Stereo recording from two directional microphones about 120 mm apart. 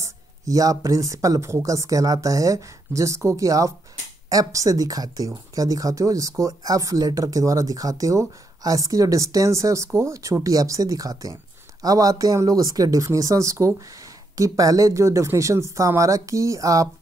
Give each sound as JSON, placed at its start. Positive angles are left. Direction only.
{"t": 0.0, "sound": "speech", "side_deg": -30}